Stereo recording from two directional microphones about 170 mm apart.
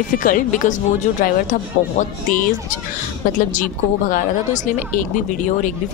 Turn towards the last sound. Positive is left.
turn(degrees=50)  # may be behind; listen again after turning